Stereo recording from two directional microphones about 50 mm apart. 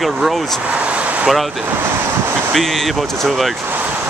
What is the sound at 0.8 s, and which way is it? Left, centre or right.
Vehicle, right.